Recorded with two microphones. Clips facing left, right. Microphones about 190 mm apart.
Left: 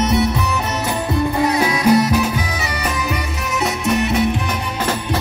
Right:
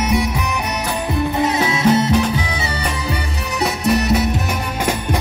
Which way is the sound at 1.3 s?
20° right (ahead or behind).